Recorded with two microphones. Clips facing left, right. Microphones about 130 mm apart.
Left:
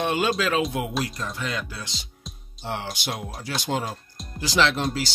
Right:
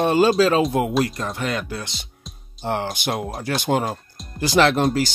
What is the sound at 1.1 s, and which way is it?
Speech, 55° right (ahead or behind).